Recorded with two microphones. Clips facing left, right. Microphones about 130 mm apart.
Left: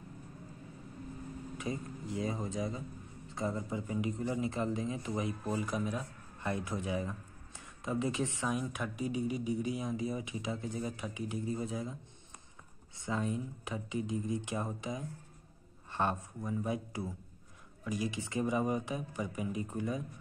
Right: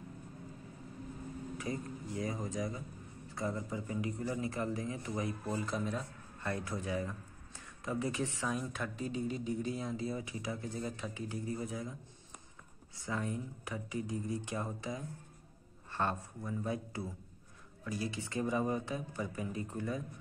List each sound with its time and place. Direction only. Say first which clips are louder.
1.6 s speech: left 2 dB; 20° left (ahead or behind)
5.8 s speech: left 1 dB; 5° left (ahead or behind)
6.4 s a man's voice: left 2 dB; 20° left (ahead or behind)
12.9 s speech: left 3 dB; 20° left (ahead or behind)